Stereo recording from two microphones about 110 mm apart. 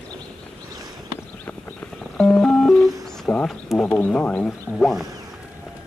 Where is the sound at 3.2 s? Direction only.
10° left (ahead or behind).